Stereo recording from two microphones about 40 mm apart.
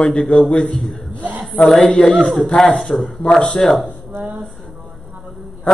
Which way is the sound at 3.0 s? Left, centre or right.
Centre.